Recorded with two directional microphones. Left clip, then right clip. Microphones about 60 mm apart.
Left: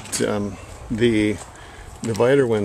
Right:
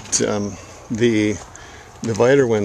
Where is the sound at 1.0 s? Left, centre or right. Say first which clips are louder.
Right 1 dB; right.